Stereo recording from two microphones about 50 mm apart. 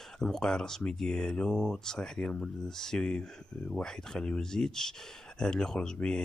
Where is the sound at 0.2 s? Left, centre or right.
Centre.